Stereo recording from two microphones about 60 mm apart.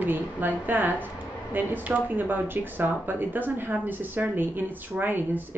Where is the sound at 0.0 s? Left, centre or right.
Right.